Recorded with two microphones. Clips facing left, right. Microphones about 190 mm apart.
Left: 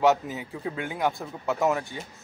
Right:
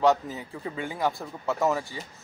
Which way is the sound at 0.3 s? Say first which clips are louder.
Left 2 dB; 5° left (ahead or behind).